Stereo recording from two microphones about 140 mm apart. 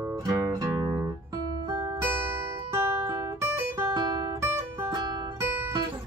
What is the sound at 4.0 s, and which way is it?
Guitar, 30° right (ahead or behind).